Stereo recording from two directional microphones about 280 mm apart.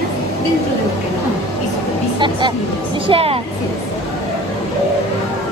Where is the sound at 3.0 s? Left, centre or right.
Centre.